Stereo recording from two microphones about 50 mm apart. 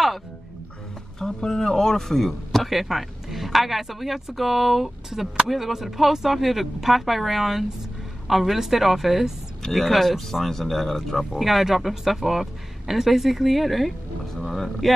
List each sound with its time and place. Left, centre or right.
1.2 s a man's voice: centre
14.3 s speech: centre